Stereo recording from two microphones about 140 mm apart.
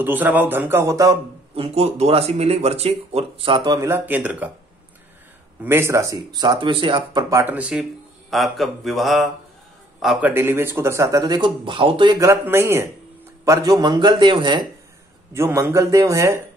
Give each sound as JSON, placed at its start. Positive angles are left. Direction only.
{"t": 0.0, "sound": "a man's voice", "side_deg": -15}
{"t": 1.5, "sound": "speech", "side_deg": -45}
{"t": 3.8, "sound": "a man's voice", "side_deg": -15}
{"t": 5.6, "sound": "speech", "side_deg": -15}
{"t": 7.2, "sound": "speech", "side_deg": -20}
{"t": 7.5, "sound": "a man's voice", "side_deg": -10}
{"t": 10.2, "sound": "speech", "side_deg": -15}
{"t": 15.3, "sound": "speech", "side_deg": -20}